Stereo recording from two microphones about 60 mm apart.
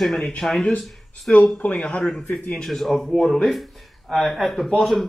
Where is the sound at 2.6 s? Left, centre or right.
Centre.